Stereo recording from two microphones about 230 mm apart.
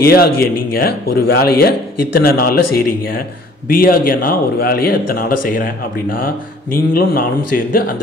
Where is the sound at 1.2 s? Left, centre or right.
Left.